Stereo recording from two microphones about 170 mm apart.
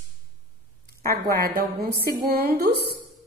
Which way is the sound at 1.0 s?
60° right (ahead or behind).